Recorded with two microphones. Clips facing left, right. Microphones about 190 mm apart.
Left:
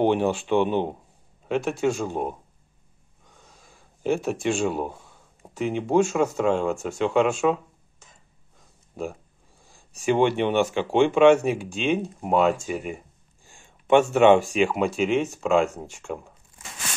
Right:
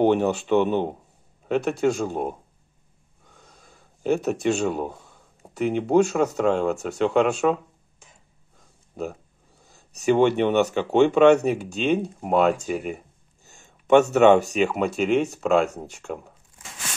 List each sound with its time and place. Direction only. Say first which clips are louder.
0.0 s speech: right 2 dB; 45° right (ahead or behind)
3.5 s a sound: right 1 dB; 50° right (ahead or behind)
5.7 s speech: right 2 dB; 55° right (ahead or behind)
10.0 s speech: right 2 dB; 45° right (ahead or behind)